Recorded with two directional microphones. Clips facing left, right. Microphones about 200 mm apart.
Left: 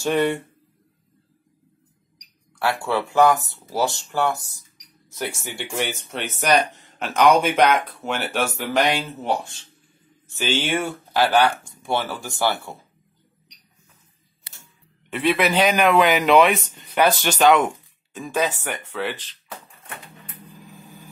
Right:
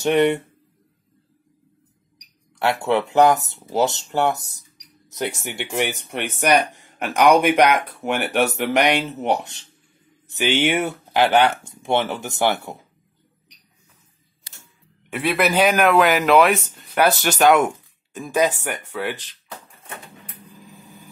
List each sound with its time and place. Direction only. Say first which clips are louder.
0.0 s speech: right 3 dB; 20° right (ahead or behind)
2.6 s speech: right 3 dB; 20° right (ahead or behind)
15.0 s speech: even; 10° right (ahead or behind)